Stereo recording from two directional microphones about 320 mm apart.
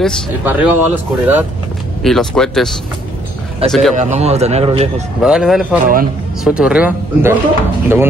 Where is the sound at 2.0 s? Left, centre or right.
Centre.